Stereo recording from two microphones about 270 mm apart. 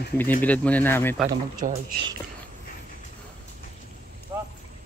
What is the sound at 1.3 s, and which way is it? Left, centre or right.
Speech, right.